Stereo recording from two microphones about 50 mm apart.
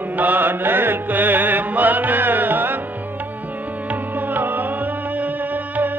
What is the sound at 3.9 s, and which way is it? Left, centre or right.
Music, right.